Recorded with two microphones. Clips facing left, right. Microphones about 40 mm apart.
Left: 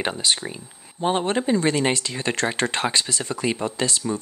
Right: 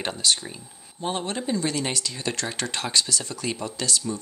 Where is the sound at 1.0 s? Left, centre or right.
Left.